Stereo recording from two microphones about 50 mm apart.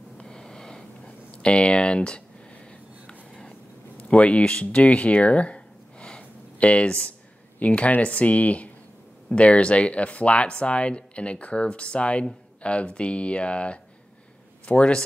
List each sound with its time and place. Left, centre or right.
0.2 s snort: centre
1.0 s speech: left
3.1 s a sound: centre
4.1 s speech: left